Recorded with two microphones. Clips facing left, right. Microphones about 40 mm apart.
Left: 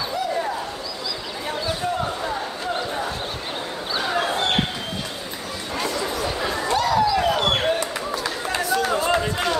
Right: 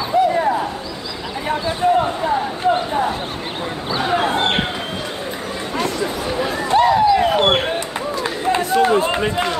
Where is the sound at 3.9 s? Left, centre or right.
Right.